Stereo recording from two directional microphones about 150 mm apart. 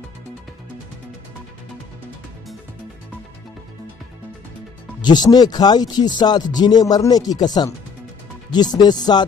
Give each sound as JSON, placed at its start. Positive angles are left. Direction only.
{"t": 5.0, "sound": "speech", "side_deg": 25}